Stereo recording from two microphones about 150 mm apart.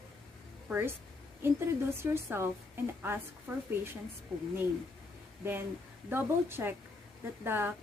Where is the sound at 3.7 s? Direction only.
15° right (ahead or behind).